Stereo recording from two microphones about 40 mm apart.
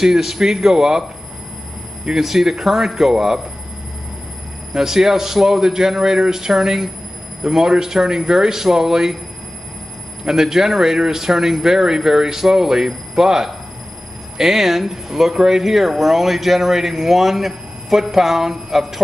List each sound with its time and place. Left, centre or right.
0.0 s speech: centre
2.0 s speech: centre
4.7 s speech: centre
10.2 s speech: centre